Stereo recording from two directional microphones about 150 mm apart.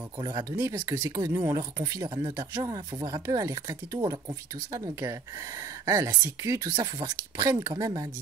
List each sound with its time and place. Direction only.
0.2 s speech: 30° right (ahead or behind)
2.0 s speech: 30° right (ahead or behind)